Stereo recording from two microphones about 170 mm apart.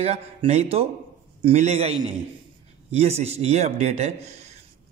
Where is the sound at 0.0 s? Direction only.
40° right (ahead or behind).